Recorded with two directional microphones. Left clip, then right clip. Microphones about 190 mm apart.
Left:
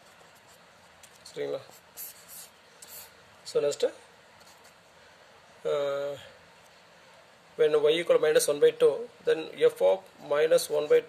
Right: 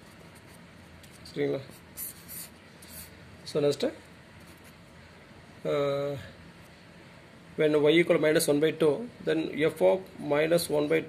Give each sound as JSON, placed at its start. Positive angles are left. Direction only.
{"t": 1.3, "sound": "a sound", "side_deg": 45}
{"t": 3.5, "sound": "a man's voice", "side_deg": 50}
{"t": 5.6, "sound": "a man's voice", "side_deg": 45}
{"t": 7.5, "sound": "a man's voice", "side_deg": 45}